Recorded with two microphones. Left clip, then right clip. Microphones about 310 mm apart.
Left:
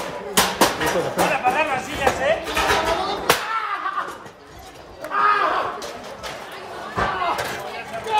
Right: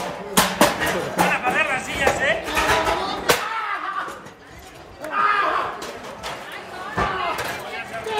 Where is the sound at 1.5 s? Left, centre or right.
Left.